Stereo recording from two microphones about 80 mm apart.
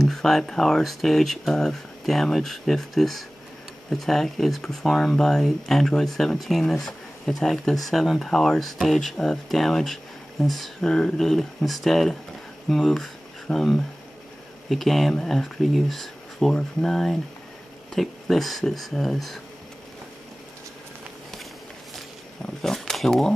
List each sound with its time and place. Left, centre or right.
0.0 s speech: centre
22.6 s speech: centre